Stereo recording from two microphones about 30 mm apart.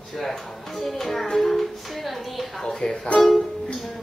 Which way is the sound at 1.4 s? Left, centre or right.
Centre.